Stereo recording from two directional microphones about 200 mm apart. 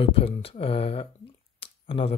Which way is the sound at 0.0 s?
30° left (ahead or behind).